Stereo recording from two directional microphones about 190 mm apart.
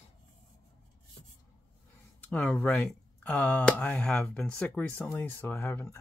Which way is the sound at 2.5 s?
10° left (ahead or behind).